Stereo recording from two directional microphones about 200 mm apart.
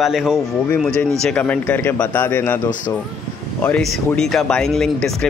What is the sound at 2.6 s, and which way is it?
Speech, 40° left (ahead or behind).